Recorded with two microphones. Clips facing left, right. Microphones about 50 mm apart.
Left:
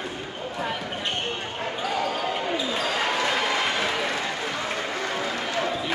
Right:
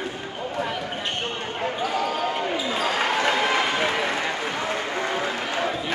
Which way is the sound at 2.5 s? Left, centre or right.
Centre.